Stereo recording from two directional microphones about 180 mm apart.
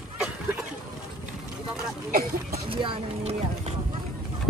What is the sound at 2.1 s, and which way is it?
Speech, 50° right (ahead or behind).